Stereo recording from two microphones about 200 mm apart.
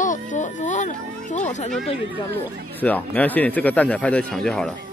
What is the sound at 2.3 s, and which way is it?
A woman's voice, 10° left (ahead or behind).